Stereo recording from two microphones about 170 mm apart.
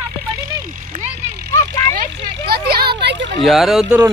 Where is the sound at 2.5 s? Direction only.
65° right (ahead or behind); by 3.3 s 90° right.